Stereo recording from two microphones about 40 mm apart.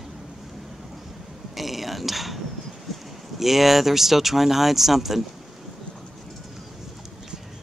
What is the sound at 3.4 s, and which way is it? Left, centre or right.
Speech, centre.